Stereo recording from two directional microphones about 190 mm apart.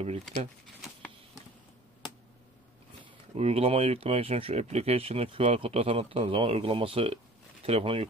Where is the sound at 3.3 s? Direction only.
35° right (ahead or behind).